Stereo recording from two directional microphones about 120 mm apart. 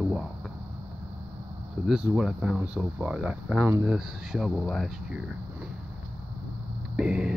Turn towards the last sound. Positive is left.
turn(degrees=-5)  # may be behind; listen again after turning